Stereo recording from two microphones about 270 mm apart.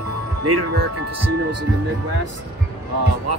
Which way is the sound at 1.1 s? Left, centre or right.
Right.